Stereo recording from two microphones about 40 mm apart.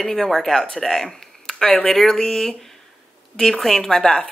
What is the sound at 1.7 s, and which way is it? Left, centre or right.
Speech, left.